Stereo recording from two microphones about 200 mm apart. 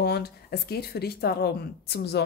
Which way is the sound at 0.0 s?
55° left (ahead or behind).